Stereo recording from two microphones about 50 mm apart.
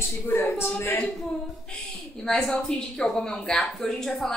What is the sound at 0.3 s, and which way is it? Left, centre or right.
Speech, left.